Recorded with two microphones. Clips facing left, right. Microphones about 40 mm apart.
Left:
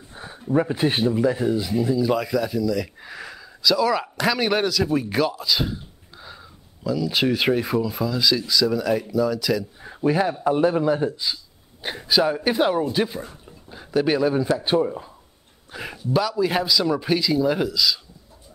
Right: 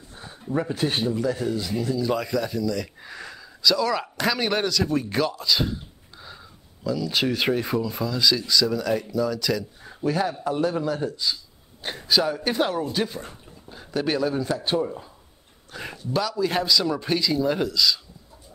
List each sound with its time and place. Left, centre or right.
0.1 s a sound: centre
0.5 s speech: centre
9.8 s a man's voice: centre